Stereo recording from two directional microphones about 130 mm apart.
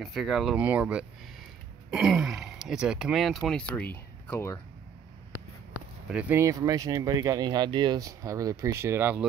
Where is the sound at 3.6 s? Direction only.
15° left (ahead or behind).